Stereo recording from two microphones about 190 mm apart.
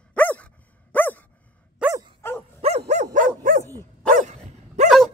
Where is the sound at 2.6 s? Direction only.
35° right (ahead or behind).